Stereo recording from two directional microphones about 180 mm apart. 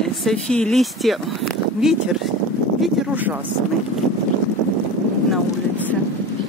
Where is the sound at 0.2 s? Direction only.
5° left (ahead or behind).